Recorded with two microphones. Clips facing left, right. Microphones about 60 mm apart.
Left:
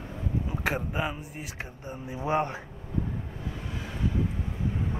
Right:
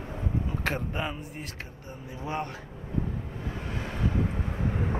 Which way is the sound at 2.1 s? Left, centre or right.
Left.